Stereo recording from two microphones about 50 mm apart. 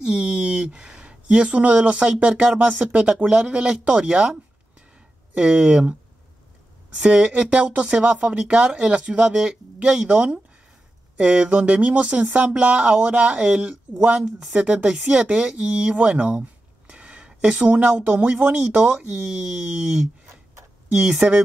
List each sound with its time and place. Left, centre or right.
0.0 s speech: centre
7.0 s speech: right